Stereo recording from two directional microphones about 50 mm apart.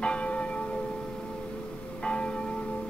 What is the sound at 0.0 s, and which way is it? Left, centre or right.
Church bell, left.